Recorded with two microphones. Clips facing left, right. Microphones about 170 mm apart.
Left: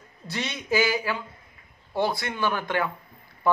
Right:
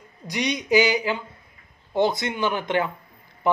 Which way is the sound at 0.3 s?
15° right (ahead or behind).